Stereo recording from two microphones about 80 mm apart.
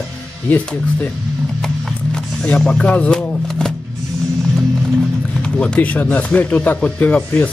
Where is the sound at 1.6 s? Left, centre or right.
Centre.